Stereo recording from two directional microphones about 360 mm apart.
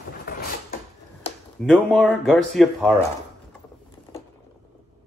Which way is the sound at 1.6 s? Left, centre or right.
Centre.